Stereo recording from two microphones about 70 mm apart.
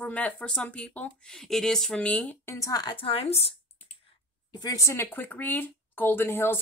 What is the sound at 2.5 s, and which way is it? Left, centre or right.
Speech, left.